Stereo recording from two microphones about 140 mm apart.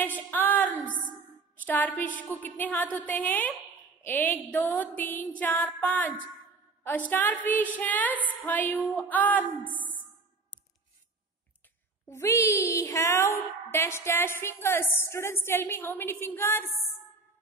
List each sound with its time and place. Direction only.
0.0 s a sound: 15° left (ahead or behind)
1.7 s a woman's voice: 10° left (ahead or behind)
12.1 s a woman's voice: 20° left (ahead or behind)